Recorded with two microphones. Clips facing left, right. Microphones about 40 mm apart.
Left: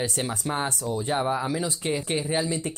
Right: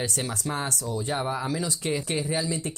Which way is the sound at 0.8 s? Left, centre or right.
Left.